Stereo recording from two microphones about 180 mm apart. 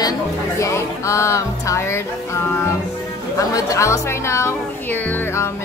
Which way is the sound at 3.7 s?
15° left (ahead or behind).